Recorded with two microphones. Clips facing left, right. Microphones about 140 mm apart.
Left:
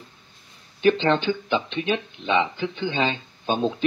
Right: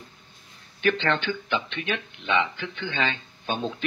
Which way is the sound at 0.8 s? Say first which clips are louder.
Left 5 dB; 30° left (ahead or behind).